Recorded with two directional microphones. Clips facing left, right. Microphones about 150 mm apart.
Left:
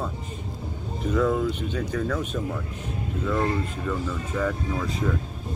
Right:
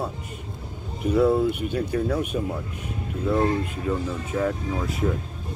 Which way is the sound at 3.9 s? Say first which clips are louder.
Right 3 dB; 35° right (ahead or behind).